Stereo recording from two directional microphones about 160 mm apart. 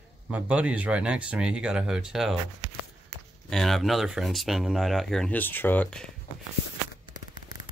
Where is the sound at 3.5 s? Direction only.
Centre (ahead or behind).